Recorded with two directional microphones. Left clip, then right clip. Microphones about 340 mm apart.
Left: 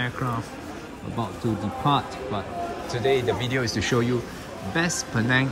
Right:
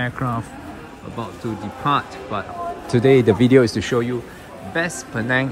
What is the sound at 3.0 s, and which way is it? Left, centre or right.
Speech, centre.